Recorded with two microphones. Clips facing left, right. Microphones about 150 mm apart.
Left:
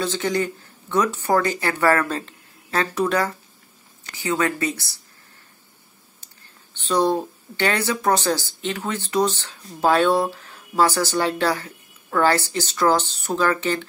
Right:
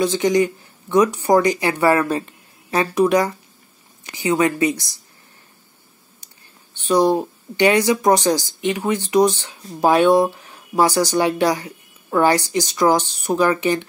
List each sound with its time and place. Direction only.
0.0 s speech: 15° right (ahead or behind)
6.8 s speech: 10° right (ahead or behind)